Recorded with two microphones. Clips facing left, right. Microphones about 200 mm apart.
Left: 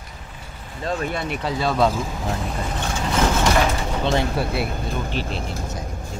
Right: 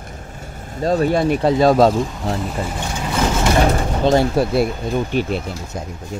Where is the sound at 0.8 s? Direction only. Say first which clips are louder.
Right 9 dB; 35° right (ahead or behind).